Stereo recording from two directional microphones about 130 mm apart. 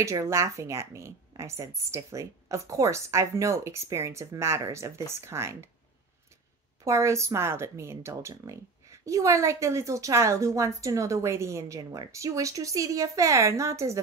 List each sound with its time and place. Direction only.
0.0 s speech: 25° right (ahead or behind)
6.8 s speech: 25° right (ahead or behind)